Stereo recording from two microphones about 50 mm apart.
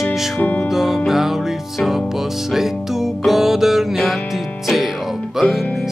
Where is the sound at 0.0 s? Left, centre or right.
Centre.